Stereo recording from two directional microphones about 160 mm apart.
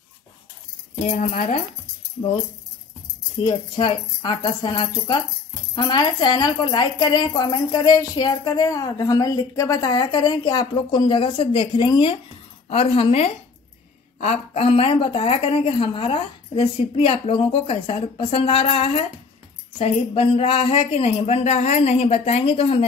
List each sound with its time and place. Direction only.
1.0 s speech: 50° left (ahead or behind)
3.4 s a woman's voice: 30° left (ahead or behind)